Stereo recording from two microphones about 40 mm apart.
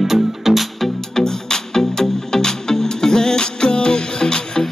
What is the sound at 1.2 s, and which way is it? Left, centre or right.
Music, centre.